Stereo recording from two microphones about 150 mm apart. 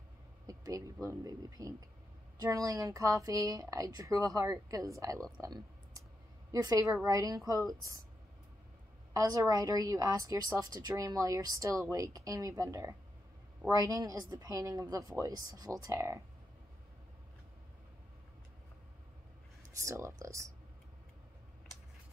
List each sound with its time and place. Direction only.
0.5 s a sound: 25° right (ahead or behind)
1.0 s a woman's voice: 25° right (ahead or behind)
5.4 s clicking: 25° right (ahead or behind)
6.5 s a woman's voice: 25° right (ahead or behind)
9.1 s a woman's voice: 25° right (ahead or behind)
19.8 s a woman's voice: 20° right (ahead or behind)